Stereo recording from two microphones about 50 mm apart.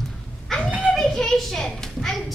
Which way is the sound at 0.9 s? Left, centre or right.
Centre.